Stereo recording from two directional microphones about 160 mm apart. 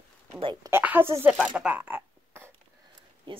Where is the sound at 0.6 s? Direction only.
15° right (ahead or behind).